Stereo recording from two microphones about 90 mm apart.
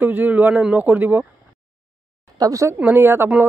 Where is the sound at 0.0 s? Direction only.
20° right (ahead or behind).